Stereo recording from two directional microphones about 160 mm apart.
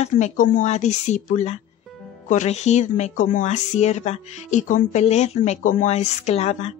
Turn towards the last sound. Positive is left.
turn(degrees=40)  # may be behind; listen again after turning